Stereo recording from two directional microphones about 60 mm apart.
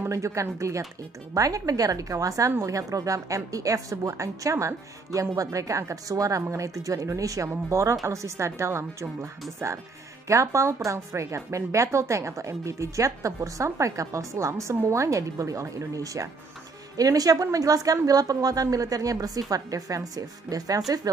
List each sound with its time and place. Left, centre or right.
0.1 s speech: right
1.3 s speech: right
10.2 s speech: right
16.9 s a woman's voice: right